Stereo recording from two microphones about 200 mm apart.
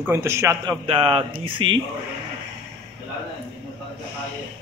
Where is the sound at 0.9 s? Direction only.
25° right (ahead or behind).